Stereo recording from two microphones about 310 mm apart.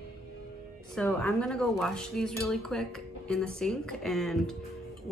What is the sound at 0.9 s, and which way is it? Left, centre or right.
Speech, centre.